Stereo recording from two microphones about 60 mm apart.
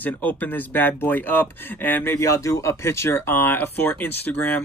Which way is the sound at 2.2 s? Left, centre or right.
Left.